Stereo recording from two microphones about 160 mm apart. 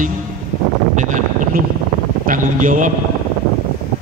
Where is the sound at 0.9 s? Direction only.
50° right (ahead or behind).